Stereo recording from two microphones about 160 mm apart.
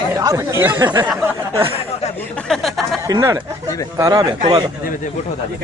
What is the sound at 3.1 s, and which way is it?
Speech, 25° right (ahead or behind).